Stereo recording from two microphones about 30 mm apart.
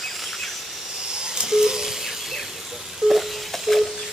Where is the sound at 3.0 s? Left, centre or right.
Right.